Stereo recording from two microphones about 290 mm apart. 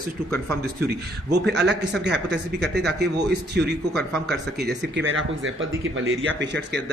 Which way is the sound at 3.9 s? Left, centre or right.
Centre.